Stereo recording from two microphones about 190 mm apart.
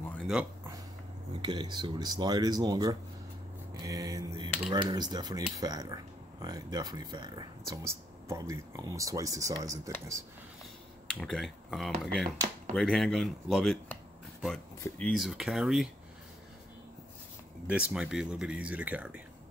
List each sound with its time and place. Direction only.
0.1 s a sound: 5° left (ahead or behind)
1.3 s speech: 20° right (ahead or behind)
11.1 s speech: centre (ahead or behind)
17.6 s speech: 5° right (ahead or behind)